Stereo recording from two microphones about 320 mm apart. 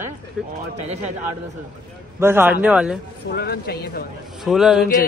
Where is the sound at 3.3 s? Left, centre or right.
Left.